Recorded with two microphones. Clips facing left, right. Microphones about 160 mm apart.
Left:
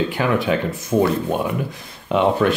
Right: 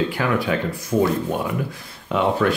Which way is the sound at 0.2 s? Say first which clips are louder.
Left 4 dB; 20° left (ahead or behind).